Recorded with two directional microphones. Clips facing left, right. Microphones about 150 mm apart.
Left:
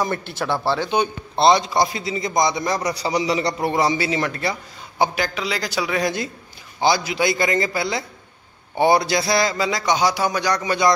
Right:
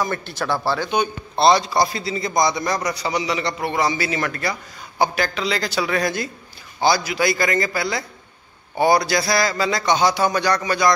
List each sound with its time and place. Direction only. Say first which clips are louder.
0.3 s a man's voice: even; 25° left (ahead or behind)